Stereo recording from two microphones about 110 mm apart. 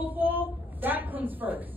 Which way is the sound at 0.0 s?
15° right (ahead or behind).